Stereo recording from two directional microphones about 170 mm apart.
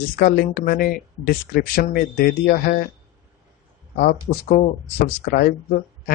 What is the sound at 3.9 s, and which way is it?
Speech, 55° left (ahead or behind).